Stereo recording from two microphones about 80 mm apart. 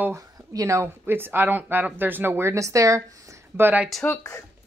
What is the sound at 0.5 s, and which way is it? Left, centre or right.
Speech, right.